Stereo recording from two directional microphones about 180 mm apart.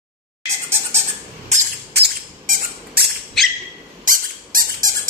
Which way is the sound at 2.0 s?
60° right (ahead or behind).